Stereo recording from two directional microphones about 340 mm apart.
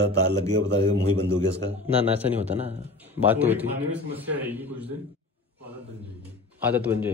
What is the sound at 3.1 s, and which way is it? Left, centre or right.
Speech, centre.